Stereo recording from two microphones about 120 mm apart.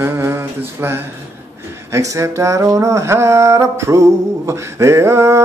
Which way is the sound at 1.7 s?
25° right (ahead or behind).